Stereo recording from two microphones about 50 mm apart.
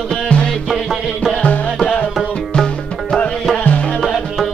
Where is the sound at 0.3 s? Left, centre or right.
Left.